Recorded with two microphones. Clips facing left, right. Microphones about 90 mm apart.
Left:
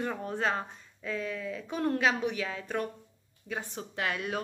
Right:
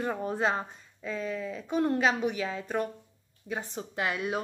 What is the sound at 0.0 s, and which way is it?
A woman's voice, 15° right (ahead or behind).